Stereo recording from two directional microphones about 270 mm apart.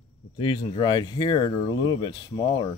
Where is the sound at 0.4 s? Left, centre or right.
Centre.